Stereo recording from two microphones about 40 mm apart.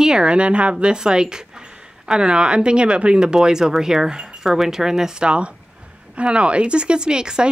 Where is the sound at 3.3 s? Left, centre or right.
Centre.